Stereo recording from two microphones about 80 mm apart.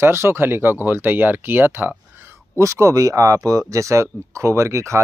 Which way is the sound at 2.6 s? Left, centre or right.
Right.